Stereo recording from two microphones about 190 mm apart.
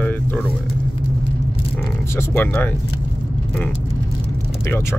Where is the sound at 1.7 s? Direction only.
15° left (ahead or behind).